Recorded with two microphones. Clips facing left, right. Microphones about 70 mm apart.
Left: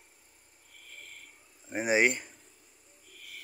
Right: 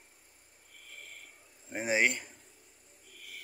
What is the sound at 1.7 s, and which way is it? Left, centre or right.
Speech, centre.